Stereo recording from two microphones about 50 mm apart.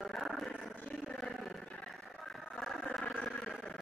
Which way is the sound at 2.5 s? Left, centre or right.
Centre.